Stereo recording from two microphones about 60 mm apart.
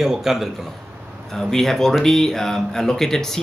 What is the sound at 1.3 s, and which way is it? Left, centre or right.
Speech, centre.